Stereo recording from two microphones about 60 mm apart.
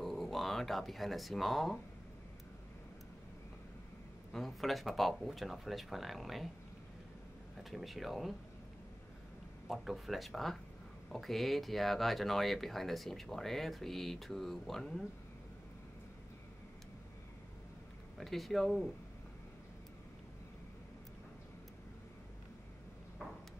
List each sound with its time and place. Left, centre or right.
0.0 s speech: centre
4.3 s speech: centre
7.5 s speech: centre
9.7 s speech: centre
18.1 s speech: centre